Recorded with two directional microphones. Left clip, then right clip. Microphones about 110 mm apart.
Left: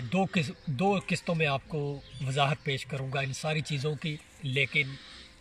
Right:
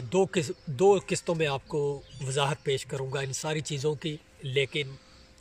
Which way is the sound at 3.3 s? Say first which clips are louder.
Right 1 dB; 65° right (ahead or behind).